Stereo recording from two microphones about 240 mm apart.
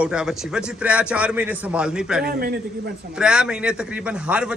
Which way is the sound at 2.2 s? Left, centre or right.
Right.